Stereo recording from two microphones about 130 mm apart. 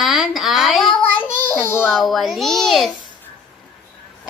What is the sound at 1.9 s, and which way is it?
A woman's voice, centre (ahead or behind).